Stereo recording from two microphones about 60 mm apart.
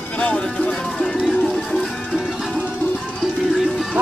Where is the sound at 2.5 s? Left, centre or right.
Left.